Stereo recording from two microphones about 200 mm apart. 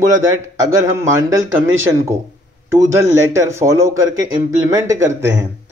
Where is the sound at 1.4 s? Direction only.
75° right (ahead or behind).